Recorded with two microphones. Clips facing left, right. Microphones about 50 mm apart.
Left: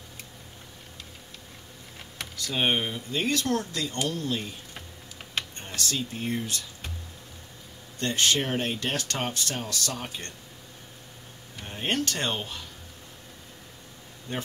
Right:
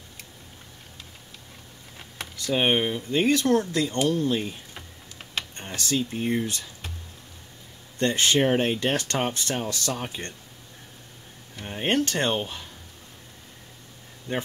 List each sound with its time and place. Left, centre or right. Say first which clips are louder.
2.3 s speech: right 4 dB; centre
5.8 s speech: right 4 dB; right
8.0 s speech: right 4 dB; right
11.6 s speech: right 4 dB; centre